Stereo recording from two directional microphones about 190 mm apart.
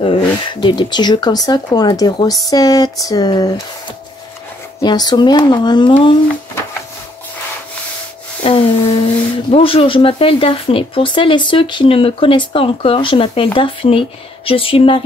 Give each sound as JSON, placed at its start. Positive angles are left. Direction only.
{"t": 0.0, "sound": "speech", "side_deg": 25}
{"t": 4.8, "sound": "speech", "side_deg": 20}
{"t": 8.5, "sound": "a sound", "side_deg": 30}
{"t": 9.5, "sound": "speech", "side_deg": 30}